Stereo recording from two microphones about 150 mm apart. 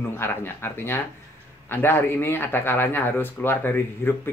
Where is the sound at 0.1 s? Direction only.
15° left (ahead or behind).